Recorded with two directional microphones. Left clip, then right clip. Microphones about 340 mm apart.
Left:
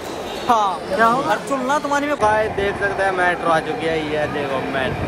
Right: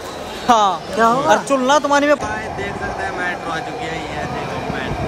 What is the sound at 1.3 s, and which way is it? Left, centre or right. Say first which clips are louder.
Speech: right 5 dB; right.